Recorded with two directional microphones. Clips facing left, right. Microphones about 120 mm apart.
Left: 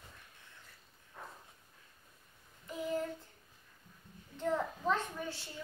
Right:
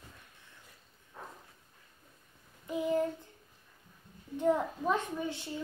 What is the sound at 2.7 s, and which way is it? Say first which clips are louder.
Child singing: right 7 dB; 15° right (ahead or behind).